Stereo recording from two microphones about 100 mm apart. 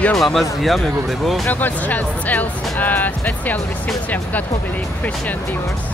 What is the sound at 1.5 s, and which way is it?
Speech, 15° left (ahead or behind).